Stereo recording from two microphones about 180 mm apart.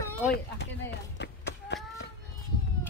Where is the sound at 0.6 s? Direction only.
75° left (ahead or behind).